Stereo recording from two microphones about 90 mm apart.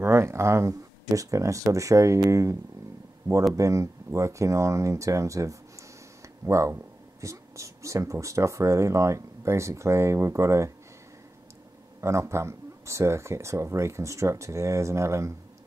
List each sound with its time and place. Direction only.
0.0 s speech: 30° right (ahead or behind)
3.5 s speech: 35° right (ahead or behind)
12.0 s speech: 30° right (ahead or behind)